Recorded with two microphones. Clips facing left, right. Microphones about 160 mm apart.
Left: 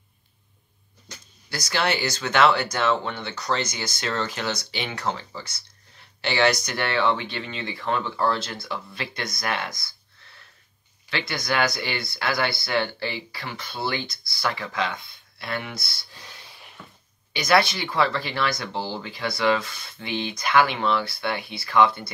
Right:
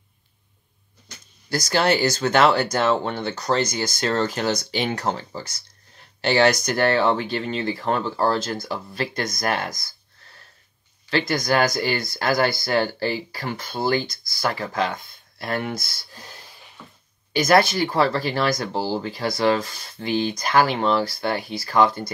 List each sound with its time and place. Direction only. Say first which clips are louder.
1.5 s speech: right 5 dB; 40° right (ahead or behind)